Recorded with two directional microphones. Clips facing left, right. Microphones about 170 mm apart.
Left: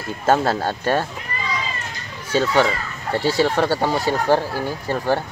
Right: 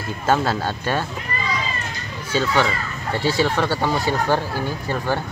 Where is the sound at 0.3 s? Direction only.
40° left (ahead or behind).